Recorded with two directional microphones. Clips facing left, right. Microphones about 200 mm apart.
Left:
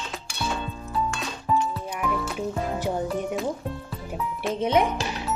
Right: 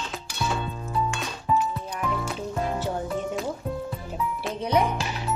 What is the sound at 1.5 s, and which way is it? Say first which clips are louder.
Music: even; centre (ahead or behind).